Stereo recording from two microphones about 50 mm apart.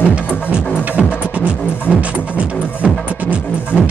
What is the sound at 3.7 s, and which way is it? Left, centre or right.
Music, left.